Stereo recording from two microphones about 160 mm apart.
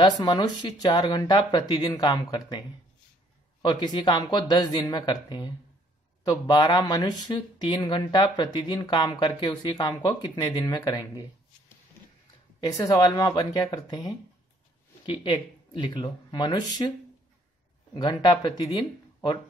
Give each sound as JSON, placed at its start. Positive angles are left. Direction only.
{"t": 0.2, "sound": "speech", "side_deg": 25}
{"t": 3.6, "sound": "speech", "side_deg": 30}
{"t": 12.5, "sound": "speech", "side_deg": 25}
{"t": 17.9, "sound": "speech", "side_deg": 30}